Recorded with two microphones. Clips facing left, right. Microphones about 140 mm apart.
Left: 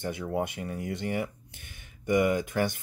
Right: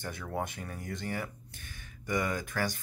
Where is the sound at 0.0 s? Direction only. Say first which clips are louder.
Left 6 dB; 20° left (ahead or behind).